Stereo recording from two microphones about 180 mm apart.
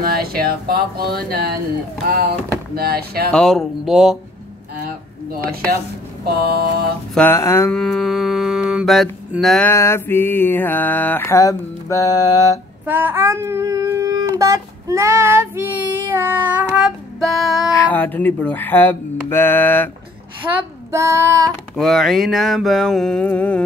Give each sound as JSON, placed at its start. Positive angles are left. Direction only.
{"t": 0.0, "sound": "speech", "side_deg": -55}
{"t": 2.7, "sound": "speech", "side_deg": -60}
{"t": 3.3, "sound": "mantra", "side_deg": 0}
{"t": 6.2, "sound": "speech", "side_deg": -60}
{"t": 7.2, "sound": "mantra", "side_deg": 15}
{"t": 7.8, "sound": "mantra", "side_deg": 0}
{"t": 9.7, "sound": "mantra", "side_deg": 15}
{"t": 12.8, "sound": "a sound", "side_deg": -10}
{"t": 14.4, "sound": "child singing", "side_deg": -20}
{"t": 16.2, "sound": "mantra", "side_deg": -10}
{"t": 17.7, "sound": "mantra", "side_deg": 10}
{"t": 20.5, "sound": "child singing", "side_deg": -15}
{"t": 21.7, "sound": "mantra", "side_deg": 0}